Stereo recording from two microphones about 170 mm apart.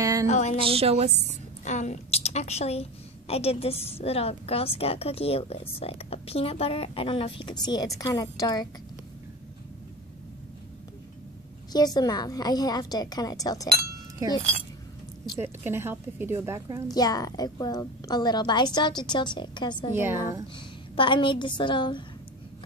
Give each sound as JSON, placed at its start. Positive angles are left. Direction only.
{"t": 0.0, "sound": "a sound", "side_deg": -20}
{"t": 0.3, "sound": "a woman's voice", "side_deg": 40}
{"t": 0.7, "sound": "a woman's voice", "side_deg": -40}
{"t": 1.6, "sound": "a woman's voice", "side_deg": 45}
{"t": 11.7, "sound": "a woman's voice", "side_deg": 25}
{"t": 15.3, "sound": "a woman's voice", "side_deg": -15}
{"t": 16.9, "sound": "a woman's voice", "side_deg": 20}
{"t": 19.9, "sound": "a woman's voice", "side_deg": -15}
{"t": 20.5, "sound": "a woman's voice", "side_deg": 30}